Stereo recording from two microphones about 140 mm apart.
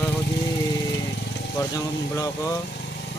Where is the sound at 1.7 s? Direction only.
25° left (ahead or behind).